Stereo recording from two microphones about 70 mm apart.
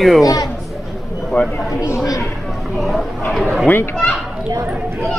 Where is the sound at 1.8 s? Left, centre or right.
Left.